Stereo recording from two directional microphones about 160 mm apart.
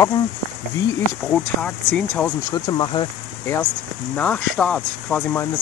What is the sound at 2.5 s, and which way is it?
Speech, 25° left (ahead or behind).